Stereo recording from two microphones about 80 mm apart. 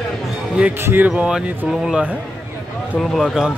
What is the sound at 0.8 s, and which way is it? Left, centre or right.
Speech, right.